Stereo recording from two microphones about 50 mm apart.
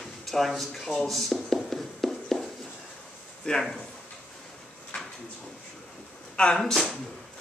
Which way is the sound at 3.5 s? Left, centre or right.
Centre.